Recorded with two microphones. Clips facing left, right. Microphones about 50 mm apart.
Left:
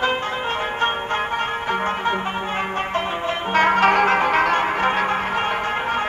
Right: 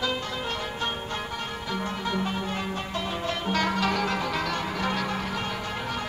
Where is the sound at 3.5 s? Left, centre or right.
Left.